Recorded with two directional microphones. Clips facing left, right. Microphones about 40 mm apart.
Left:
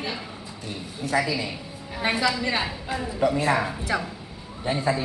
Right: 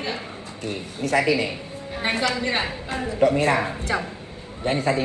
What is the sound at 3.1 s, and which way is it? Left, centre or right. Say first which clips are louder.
A man's voice: right 3 dB; right.